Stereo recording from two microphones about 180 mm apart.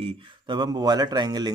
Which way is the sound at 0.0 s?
25° right (ahead or behind).